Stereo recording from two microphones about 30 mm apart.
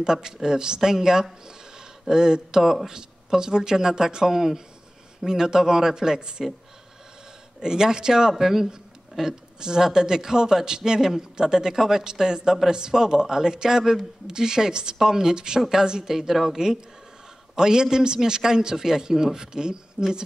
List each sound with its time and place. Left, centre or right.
0.0 s a man's voice: right
7.6 s a man's voice: right